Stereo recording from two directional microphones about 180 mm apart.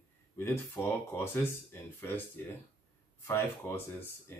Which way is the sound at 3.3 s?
15° left (ahead or behind).